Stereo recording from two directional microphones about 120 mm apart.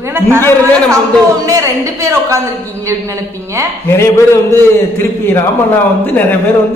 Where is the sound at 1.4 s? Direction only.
25° right (ahead or behind).